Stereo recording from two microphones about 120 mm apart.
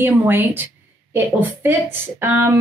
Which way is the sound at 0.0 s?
20° right (ahead or behind).